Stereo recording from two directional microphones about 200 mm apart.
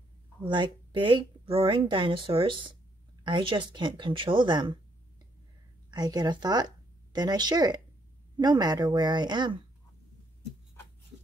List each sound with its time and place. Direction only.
0.4 s a woman's voice: 25° right (ahead or behind)
5.9 s a woman's voice: 20° right (ahead or behind)